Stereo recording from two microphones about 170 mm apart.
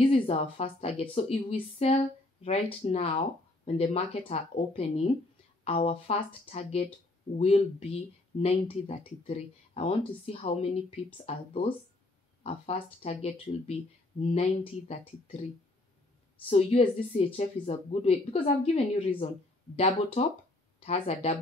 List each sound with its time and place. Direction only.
0.1 s speech: 35° left (ahead or behind)
12.4 s speech: 35° left (ahead or behind)
16.4 s speech: 35° left (ahead or behind)